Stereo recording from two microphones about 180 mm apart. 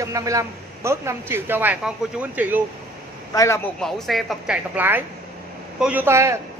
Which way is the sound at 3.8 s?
Centre (ahead or behind).